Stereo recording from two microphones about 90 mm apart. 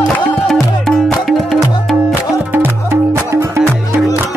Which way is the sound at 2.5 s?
20° right (ahead or behind).